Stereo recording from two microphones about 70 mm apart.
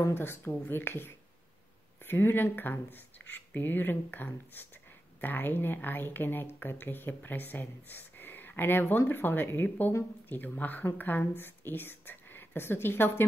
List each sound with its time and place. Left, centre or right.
0.1 s speech: left